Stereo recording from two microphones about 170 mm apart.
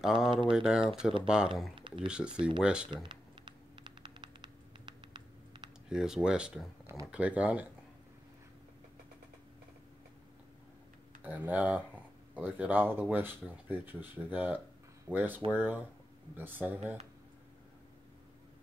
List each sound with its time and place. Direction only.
0.0 s speech: 5° right (ahead or behind)
1.8 s a sound: 30° right (ahead or behind)
2.0 s speech: 5° right (ahead or behind)
3.0 s typing: 30° right (ahead or behind)
5.9 s speech: 5° right (ahead or behind)
11.2 s speech: 10° right (ahead or behind)